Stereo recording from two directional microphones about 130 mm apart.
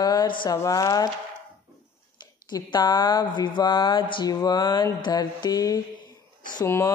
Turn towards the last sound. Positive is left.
turn(degrees=20)  # may be behind; listen again after turning